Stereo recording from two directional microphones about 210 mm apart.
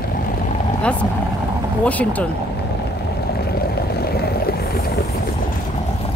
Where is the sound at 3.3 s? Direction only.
45° left (ahead or behind).